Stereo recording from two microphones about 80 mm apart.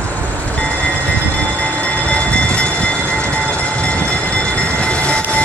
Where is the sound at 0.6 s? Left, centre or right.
Centre.